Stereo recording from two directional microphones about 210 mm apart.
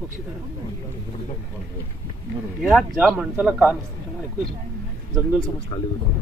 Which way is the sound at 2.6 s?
Centre (ahead or behind).